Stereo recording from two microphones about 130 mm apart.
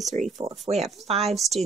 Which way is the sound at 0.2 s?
65° right (ahead or behind).